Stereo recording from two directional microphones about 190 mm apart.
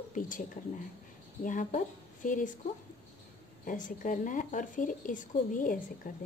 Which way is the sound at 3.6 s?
45° left (ahead or behind).